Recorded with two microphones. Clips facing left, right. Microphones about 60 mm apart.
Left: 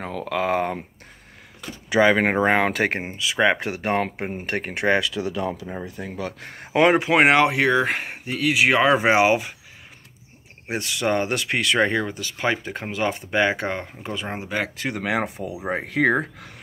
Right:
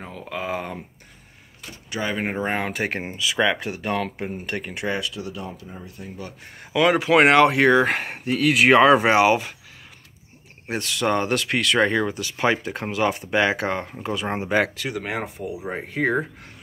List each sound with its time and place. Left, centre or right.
0.0 s speech: left
2.1 s speech: left
3.0 s speech: centre
3.5 s speech: left
4.9 s speech: left
6.5 s speech: left
7.2 s speech: centre
7.5 s speech: centre
9.0 s speech: centre
10.7 s speech: centre
12.2 s speech: centre
15.0 s speech: left
15.6 s speech: left